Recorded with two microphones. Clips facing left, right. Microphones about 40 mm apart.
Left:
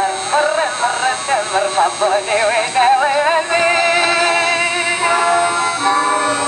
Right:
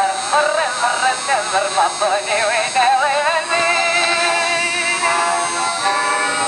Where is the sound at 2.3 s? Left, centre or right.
Left.